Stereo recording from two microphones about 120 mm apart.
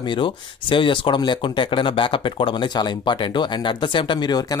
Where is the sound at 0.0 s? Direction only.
45° left (ahead or behind).